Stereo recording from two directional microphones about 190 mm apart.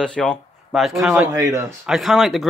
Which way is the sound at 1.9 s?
Centre (ahead or behind).